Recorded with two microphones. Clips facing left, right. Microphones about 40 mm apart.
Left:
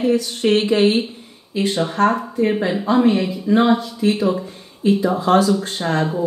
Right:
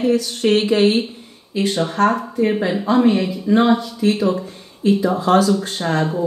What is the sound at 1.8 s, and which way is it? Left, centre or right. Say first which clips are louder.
Speech: even; centre.